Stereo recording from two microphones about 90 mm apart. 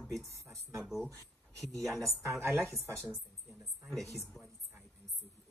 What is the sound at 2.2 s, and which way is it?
Speech, 30° right (ahead or behind).